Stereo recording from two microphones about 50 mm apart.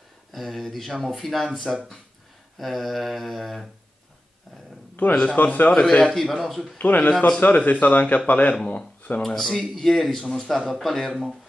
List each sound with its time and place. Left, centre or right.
0.3 s speech: centre
2.6 s speech: centre
5.2 s speech: left
5.7 s a man's voice: centre
6.1 s speech: centre
6.8 s speech: left
9.2 s a man's voice: centre